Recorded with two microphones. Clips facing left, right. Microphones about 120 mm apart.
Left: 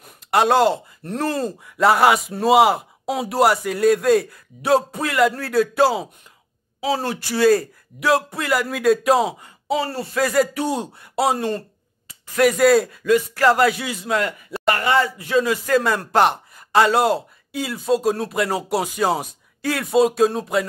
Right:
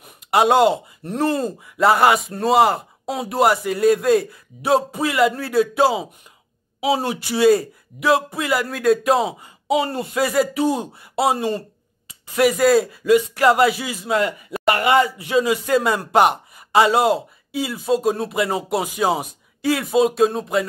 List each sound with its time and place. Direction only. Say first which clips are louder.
0.0 s a sound: right 1 dB; 5° right (ahead or behind)
1.1 s speech: right 2 dB; centre (ahead or behind)
9.8 s speech: right 1 dB; 15° right (ahead or behind)
10.2 s speech: right 1 dB; 5° right (ahead or behind)